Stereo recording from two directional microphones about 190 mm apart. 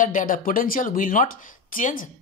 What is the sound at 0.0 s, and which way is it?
Speech, 45° left (ahead or behind).